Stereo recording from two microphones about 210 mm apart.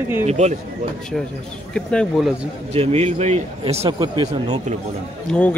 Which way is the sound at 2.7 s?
30° right (ahead or behind).